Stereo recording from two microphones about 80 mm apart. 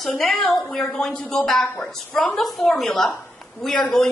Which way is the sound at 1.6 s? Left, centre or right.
Centre.